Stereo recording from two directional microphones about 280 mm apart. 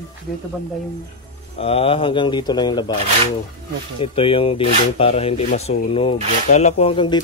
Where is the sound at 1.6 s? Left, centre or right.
Left.